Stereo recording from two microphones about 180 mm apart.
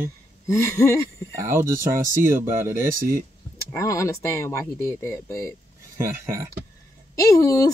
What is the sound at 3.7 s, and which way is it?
Speech, 15° left (ahead or behind).